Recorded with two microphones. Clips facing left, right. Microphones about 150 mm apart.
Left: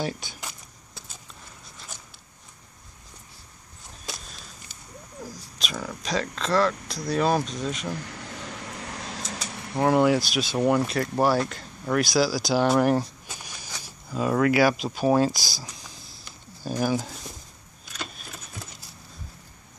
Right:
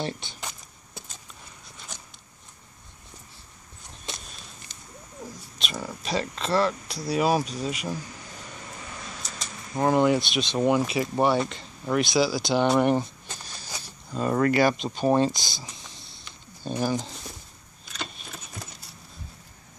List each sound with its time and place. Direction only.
0.0 s speech: 5° left (ahead or behind)
1.9 s zipper: 5° left (ahead or behind)
4.1 s walk: centre (ahead or behind)
5.6 s speech: centre (ahead or behind)
8.0 s a sound: 70° left (ahead or behind)
9.8 s speech: 5° left (ahead or behind)
13.4 s vehicle: 15° left (ahead or behind)
13.8 s a sound: 5° left (ahead or behind)
14.3 s speech: 5° left (ahead or behind)
15.3 s speech: 20° right (ahead or behind)
15.6 s a sound: centre (ahead or behind)
16.8 s speech: 5° left (ahead or behind)
17.9 s keys jangling: 5° left (ahead or behind)